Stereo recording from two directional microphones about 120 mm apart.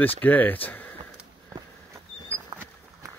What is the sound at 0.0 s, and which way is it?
Speech, 15° left (ahead or behind).